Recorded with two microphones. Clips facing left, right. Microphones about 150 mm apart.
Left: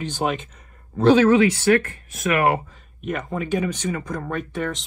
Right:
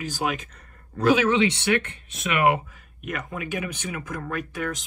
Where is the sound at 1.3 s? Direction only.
25° right (ahead or behind).